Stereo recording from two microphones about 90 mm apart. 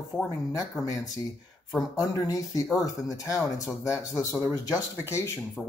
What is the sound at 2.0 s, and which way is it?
Speech, 40° left (ahead or behind).